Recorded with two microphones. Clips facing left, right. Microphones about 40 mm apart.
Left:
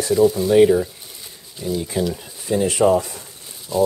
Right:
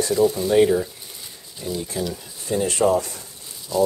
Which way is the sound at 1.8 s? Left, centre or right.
Centre.